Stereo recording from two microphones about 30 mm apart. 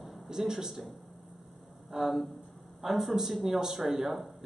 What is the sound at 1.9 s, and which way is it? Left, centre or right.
A man's voice, centre.